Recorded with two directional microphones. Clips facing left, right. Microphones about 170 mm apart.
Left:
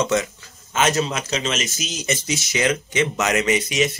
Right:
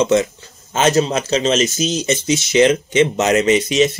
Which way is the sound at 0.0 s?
25° right (ahead or behind).